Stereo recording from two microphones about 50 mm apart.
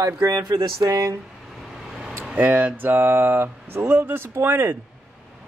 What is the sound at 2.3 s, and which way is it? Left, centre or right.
Speech, right.